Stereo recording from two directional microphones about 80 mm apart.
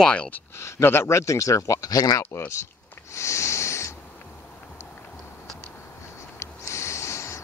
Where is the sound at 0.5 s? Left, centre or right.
Left.